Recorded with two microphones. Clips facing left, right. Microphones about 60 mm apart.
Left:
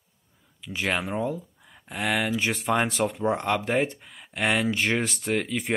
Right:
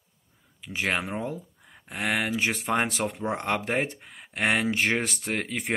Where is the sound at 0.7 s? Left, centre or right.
Right.